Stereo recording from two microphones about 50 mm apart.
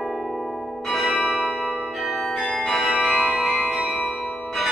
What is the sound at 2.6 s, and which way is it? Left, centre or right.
Change ringing, centre.